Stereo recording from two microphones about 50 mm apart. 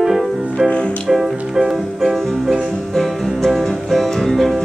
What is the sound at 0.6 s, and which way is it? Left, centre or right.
Music, left.